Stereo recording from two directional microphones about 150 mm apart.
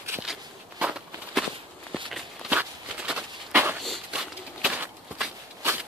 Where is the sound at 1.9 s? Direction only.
5° right (ahead or behind).